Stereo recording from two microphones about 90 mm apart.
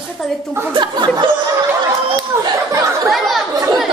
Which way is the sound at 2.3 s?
25° right (ahead or behind).